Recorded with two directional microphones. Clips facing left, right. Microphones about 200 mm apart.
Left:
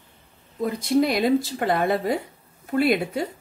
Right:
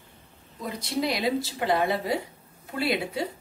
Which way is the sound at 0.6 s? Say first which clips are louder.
Left 8 dB; 50° left (ahead or behind).